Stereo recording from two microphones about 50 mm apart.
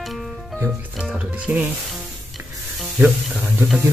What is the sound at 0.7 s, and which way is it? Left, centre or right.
Speech, centre.